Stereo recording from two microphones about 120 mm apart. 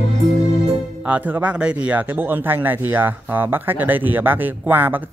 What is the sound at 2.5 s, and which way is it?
Speech, 15° right (ahead or behind).